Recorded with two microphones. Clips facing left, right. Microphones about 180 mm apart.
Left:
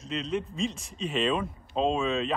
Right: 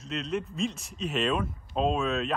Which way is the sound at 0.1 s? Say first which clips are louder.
Left 1 dB; centre (ahead or behind).